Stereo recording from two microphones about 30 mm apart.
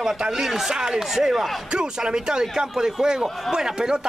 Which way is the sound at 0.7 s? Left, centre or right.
Right.